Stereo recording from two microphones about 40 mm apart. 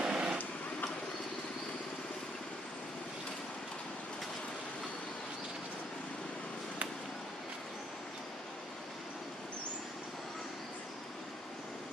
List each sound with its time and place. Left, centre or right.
0.0 s vehicle: centre